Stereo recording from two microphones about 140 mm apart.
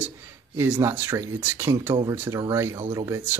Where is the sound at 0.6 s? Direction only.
15° right (ahead or behind).